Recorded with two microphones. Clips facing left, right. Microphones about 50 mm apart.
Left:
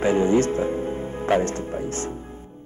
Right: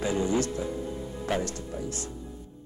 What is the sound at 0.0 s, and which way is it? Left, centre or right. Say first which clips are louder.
Speech: left 8 dB; left.